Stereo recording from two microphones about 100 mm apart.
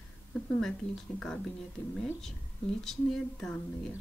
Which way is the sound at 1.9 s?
5° left (ahead or behind).